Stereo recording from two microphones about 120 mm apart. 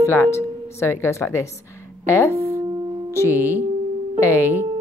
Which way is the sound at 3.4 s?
15° right (ahead or behind).